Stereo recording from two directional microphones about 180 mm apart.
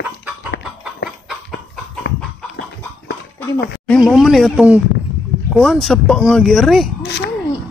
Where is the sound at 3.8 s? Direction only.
Centre (ahead or behind).